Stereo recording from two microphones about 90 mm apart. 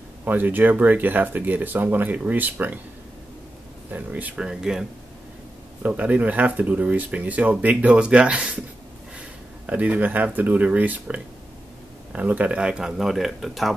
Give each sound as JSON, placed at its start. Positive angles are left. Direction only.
{"t": 0.2, "sound": "speech", "side_deg": -20}
{"t": 3.9, "sound": "speech", "side_deg": -15}
{"t": 9.7, "sound": "speech", "side_deg": -15}